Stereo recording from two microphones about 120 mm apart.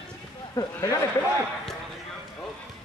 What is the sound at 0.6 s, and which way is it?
Speech, 35° left (ahead or behind).